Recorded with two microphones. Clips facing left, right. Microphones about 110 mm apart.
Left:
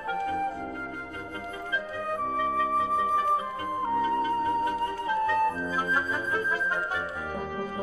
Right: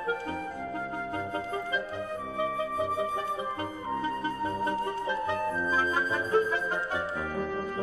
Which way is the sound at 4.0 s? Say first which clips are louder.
Left 4 dB; 25° right (ahead or behind).